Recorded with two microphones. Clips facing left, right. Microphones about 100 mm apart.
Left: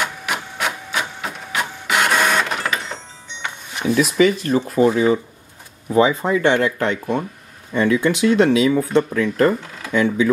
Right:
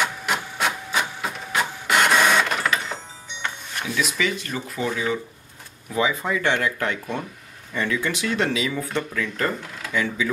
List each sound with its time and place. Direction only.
0.0 s printer: centre (ahead or behind)
3.9 s speech: 40° left (ahead or behind)